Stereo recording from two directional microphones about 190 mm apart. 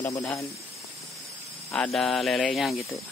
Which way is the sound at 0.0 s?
15° left (ahead or behind).